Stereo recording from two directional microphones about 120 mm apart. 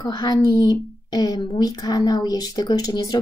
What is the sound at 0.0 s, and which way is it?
Speech, 35° left (ahead or behind).